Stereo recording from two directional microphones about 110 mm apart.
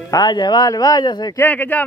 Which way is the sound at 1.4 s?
15° left (ahead or behind).